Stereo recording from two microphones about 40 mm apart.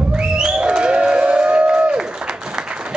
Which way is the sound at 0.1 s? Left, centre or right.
Centre.